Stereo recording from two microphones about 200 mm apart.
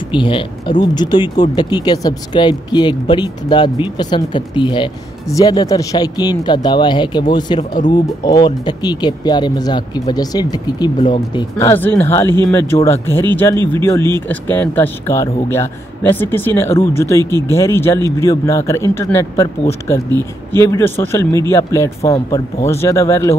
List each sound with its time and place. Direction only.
0.1 s speech: 25° left (ahead or behind)
11.5 s speech: 10° left (ahead or behind)
20.1 s speech: 20° right (ahead or behind)
20.6 s speech: 15° left (ahead or behind)